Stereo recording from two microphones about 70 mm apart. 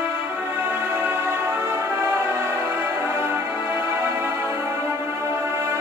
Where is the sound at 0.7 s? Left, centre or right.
Right.